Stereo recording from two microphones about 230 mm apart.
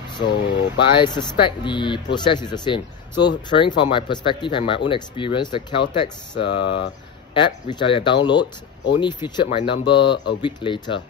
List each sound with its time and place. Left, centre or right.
0.1 s speech: centre